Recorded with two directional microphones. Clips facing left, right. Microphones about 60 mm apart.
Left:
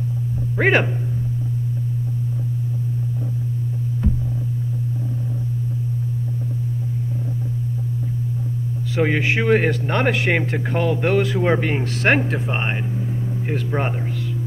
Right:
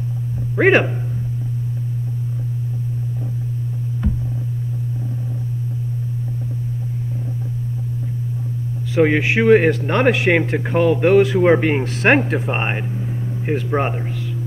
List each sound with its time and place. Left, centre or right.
0.6 s speech: centre
8.9 s speech: centre
11.4 s speech: centre
12.3 s speech: right